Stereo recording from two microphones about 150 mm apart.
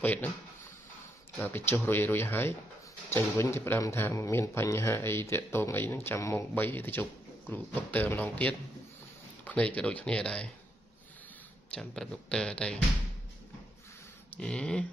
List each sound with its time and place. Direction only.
0.0 s speech: 10° left (ahead or behind)
1.4 s speech: 15° left (ahead or behind)
11.7 s speech: 5° left (ahead or behind)
14.3 s speech: 5° left (ahead or behind)